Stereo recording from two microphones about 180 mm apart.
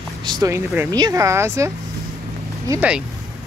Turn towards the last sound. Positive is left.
turn(degrees=-10)  # may be behind; listen again after turning